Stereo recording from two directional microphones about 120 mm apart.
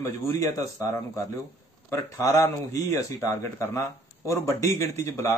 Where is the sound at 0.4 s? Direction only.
25° left (ahead or behind).